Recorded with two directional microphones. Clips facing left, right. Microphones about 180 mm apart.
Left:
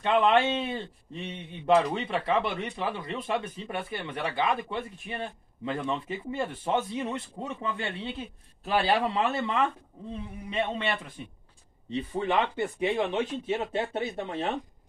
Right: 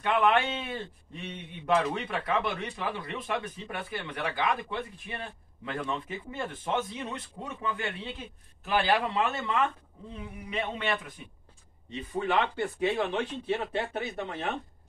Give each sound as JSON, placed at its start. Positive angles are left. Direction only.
{"t": 0.0, "sound": "a man's voice", "side_deg": 25}